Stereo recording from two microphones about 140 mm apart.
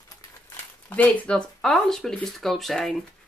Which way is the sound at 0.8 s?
10° left (ahead or behind).